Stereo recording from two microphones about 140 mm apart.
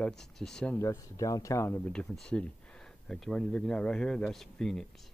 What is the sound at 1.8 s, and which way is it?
Speech, 5° left (ahead or behind).